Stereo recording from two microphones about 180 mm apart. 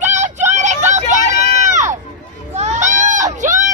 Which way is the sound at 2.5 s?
40° right (ahead or behind).